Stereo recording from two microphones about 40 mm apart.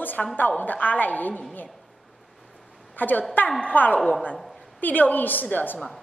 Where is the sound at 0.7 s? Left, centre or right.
Left.